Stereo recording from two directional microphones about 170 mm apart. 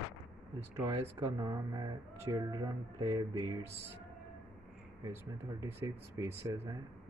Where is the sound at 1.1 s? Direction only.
20° right (ahead or behind).